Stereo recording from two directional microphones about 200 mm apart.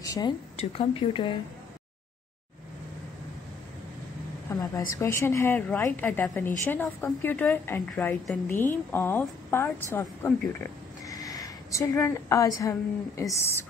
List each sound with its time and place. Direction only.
0.0 s a sound: 20° left (ahead or behind)
0.6 s speech: 25° left (ahead or behind)
4.5 s a woman's voice: 15° left (ahead or behind)